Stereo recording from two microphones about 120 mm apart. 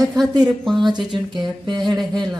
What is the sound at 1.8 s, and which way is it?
Music, centre (ahead or behind).